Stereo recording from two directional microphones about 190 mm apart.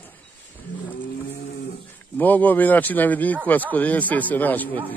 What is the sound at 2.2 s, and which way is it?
Speech, 10° left (ahead or behind).